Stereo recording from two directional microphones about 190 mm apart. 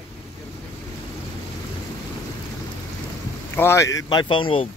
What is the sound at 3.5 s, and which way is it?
Speech, 15° left (ahead or behind).